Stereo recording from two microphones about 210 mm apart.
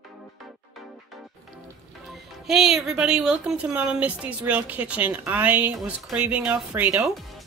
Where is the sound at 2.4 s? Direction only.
Centre (ahead or behind).